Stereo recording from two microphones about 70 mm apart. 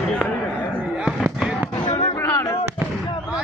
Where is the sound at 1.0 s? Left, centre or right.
Centre.